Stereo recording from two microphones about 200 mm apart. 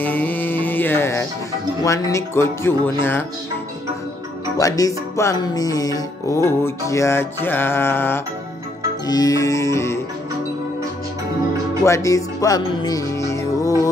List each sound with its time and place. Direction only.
0.0 s music: 10° left (ahead or behind)
4.6 s music: 15° left (ahead or behind)
11.8 s music: 15° left (ahead or behind)